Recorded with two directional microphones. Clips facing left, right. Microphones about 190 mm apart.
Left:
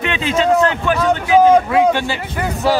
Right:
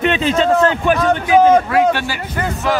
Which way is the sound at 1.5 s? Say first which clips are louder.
Even; 15° left (ahead or behind).